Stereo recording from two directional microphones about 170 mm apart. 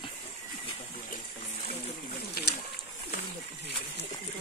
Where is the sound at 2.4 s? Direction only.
60° left (ahead or behind).